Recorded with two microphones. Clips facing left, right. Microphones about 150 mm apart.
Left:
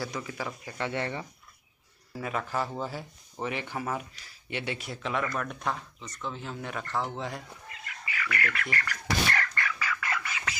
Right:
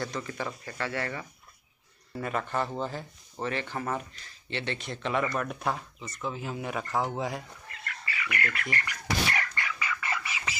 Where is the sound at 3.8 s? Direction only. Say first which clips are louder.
Right 1 dB; 5° left (ahead or behind).